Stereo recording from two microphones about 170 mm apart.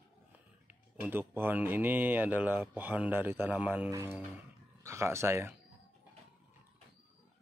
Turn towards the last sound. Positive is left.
turn(degrees=-15)  # may be behind; listen again after turning